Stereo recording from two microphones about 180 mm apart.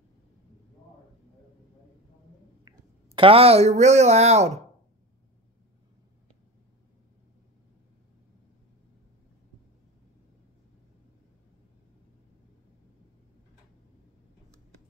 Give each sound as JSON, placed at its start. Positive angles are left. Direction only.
{"t": 3.2, "sound": "speech", "side_deg": -30}